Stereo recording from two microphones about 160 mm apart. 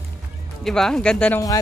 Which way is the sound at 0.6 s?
Centre (ahead or behind).